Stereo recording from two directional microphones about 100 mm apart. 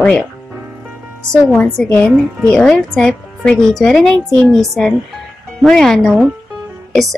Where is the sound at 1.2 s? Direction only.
10° left (ahead or behind).